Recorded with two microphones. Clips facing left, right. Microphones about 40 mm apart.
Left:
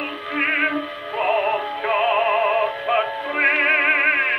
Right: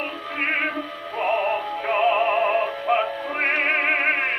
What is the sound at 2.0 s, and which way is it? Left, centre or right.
Music, left.